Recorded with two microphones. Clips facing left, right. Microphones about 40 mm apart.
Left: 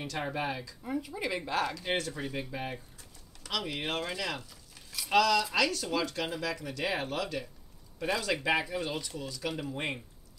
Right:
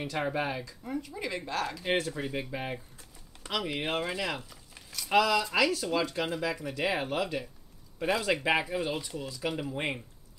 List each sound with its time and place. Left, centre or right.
0.0 s speech: centre
0.8 s speech: centre
1.8 s speech: centre
3.4 s chopping: centre
5.1 s speech: centre